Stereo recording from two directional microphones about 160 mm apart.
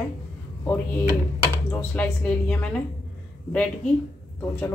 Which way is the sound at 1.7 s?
10° left (ahead or behind).